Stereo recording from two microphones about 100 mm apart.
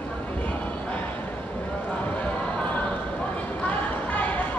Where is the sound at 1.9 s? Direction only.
15° left (ahead or behind).